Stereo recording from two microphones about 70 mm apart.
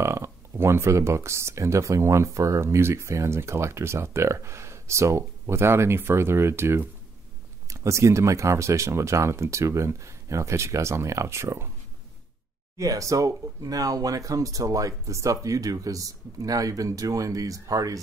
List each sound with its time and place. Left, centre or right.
0.0 s speech: right
12.7 s speech: right